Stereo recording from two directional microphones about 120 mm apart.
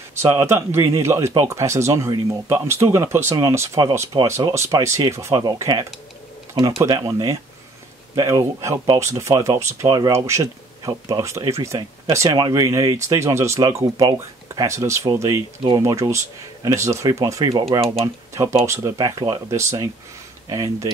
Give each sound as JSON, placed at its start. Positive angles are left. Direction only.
{"t": 0.2, "sound": "speech", "side_deg": -20}
{"t": 5.3, "sound": "speech", "side_deg": -35}
{"t": 9.8, "sound": "speech", "side_deg": -35}
{"t": 10.1, "sound": "speech", "side_deg": -25}